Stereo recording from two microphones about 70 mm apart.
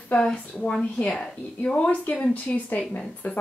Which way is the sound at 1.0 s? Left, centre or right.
Left.